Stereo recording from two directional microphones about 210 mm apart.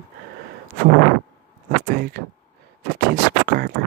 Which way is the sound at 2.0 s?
45° right (ahead or behind).